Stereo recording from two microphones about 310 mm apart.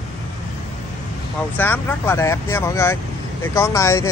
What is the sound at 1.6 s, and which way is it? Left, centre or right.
Speech, centre.